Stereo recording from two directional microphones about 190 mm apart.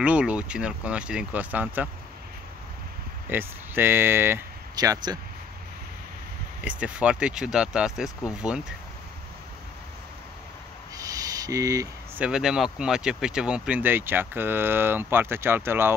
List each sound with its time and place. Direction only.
0.0 s speech: 5° right (ahead or behind)
3.3 s speech: 10° right (ahead or behind)
6.6 s speech: 5° right (ahead or behind)
11.0 s a sound: 20° right (ahead or behind)
12.2 s speech: 5° right (ahead or behind)